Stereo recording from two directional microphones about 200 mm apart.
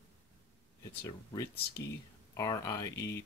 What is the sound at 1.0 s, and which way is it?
Speech, 15° left (ahead or behind).